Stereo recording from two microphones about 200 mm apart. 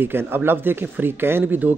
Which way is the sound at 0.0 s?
10° right (ahead or behind).